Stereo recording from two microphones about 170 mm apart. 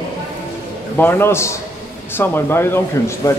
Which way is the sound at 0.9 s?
10° left (ahead or behind).